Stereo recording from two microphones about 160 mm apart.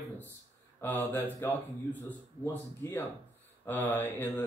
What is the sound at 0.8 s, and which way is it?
Speech, 10° left (ahead or behind).